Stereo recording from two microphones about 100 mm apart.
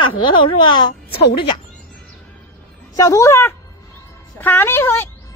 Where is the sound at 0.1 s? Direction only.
55° left (ahead or behind).